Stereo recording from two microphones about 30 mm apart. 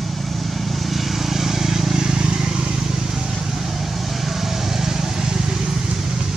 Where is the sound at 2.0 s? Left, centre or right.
Right.